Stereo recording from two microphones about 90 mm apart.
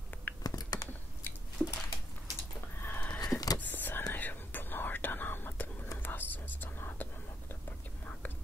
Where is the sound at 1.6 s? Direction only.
15° right (ahead or behind).